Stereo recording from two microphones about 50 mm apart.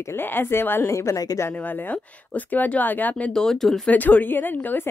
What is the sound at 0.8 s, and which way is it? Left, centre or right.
Speech, left.